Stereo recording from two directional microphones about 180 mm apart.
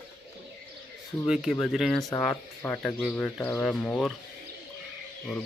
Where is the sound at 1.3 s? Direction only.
Centre (ahead or behind).